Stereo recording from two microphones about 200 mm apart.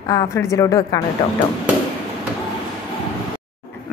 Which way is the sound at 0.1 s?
15° left (ahead or behind).